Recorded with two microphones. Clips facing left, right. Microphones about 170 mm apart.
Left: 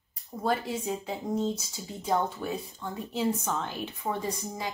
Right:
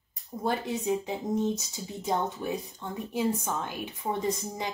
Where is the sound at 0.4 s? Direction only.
20° right (ahead or behind).